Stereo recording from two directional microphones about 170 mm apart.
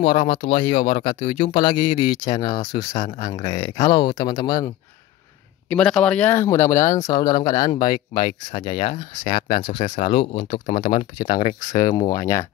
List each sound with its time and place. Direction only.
0.1 s speech: 50° left (ahead or behind); by 4.6 s 20° left (ahead or behind)
5.7 s speech: 5° left (ahead or behind); by 7.9 s 25° left (ahead or behind)
8.5 s speech: 50° left (ahead or behind)
9.5 s speech: 30° left (ahead or behind)
10.9 s speech: 55° left (ahead or behind)